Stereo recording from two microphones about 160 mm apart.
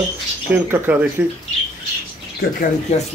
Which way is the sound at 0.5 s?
10° right (ahead or behind).